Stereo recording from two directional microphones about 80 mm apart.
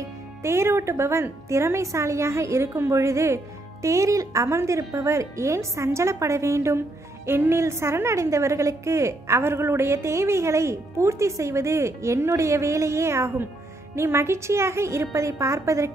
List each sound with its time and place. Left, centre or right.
0.4 s a woman's voice: right